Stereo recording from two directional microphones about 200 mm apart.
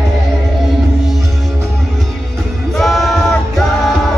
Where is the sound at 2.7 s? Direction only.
Centre (ahead or behind).